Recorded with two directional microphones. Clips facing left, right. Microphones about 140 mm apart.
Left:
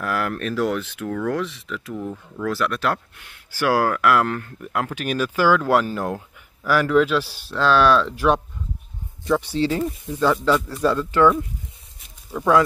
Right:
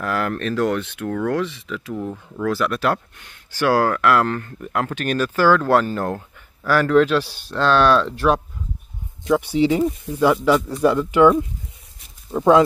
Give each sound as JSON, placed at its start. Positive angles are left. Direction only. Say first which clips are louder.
{"t": 0.0, "sound": "speech", "louder": "right 2 dB", "side_deg": 5}
{"t": 9.2, "sound": "speech", "louder": "right 3 dB", "side_deg": -15}